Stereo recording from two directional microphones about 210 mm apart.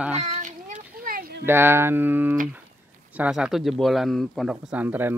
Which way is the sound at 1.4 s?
10° right (ahead or behind).